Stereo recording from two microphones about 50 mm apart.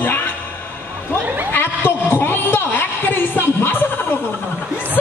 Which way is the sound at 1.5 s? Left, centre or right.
Left.